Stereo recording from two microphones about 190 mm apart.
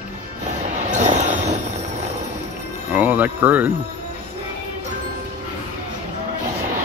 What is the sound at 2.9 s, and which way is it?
Speech, 10° right (ahead or behind).